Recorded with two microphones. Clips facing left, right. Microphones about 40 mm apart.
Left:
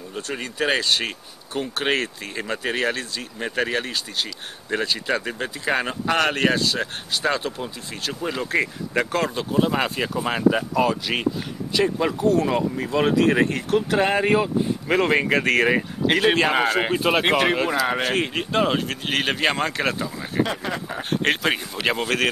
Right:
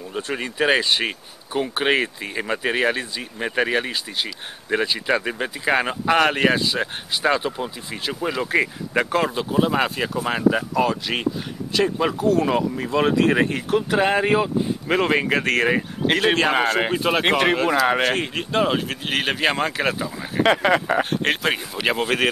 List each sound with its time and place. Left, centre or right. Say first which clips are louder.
0.1 s speech: right 3 dB; centre
20.4 s speech: right 10 dB; right
21.0 s speech: right 1 dB; centre